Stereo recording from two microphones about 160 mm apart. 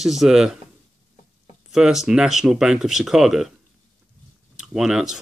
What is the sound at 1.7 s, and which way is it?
Speech, 5° right (ahead or behind).